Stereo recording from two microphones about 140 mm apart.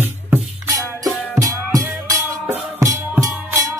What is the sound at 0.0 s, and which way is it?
Music, 15° right (ahead or behind).